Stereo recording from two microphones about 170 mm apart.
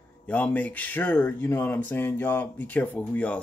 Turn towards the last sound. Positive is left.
turn(degrees=10)  # may be behind; listen again after turning